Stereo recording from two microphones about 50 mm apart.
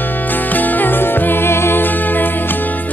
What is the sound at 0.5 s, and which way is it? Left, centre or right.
Music, left.